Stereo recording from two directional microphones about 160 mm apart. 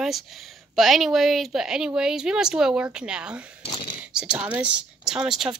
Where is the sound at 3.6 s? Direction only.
30° left (ahead or behind).